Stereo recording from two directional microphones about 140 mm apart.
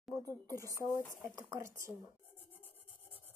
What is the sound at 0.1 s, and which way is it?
Speech, 25° right (ahead or behind).